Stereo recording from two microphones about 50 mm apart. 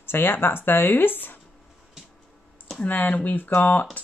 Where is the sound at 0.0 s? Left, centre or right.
Left.